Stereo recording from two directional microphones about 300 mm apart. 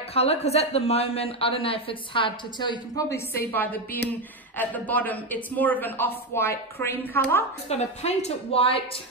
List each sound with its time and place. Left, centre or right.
0.1 s a woman's voice: centre
7.6 s a woman's voice: left